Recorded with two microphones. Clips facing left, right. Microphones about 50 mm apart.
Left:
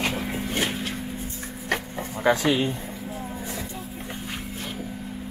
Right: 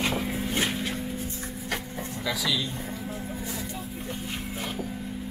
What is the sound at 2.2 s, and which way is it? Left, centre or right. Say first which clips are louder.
Speech: left 9 dB; left.